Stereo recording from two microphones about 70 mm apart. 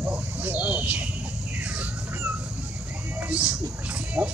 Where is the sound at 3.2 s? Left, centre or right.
Centre.